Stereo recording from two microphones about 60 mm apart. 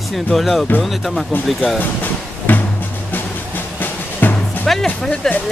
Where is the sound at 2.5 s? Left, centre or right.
Left.